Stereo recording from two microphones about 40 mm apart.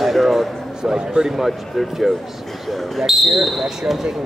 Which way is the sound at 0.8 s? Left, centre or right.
Centre.